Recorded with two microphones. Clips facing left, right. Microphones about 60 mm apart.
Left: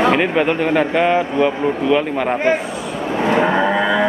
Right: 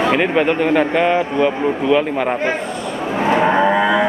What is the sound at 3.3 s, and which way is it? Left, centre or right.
Livestock, centre.